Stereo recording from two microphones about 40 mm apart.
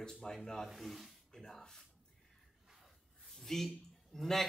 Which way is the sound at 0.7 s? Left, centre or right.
Centre.